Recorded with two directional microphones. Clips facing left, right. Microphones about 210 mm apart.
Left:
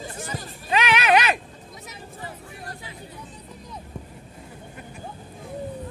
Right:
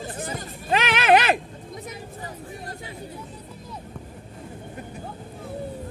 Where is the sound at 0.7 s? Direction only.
50° right (ahead or behind).